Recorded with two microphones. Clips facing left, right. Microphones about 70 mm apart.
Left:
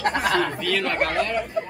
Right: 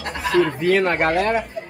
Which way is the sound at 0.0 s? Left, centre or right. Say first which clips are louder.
Left 2 dB; left.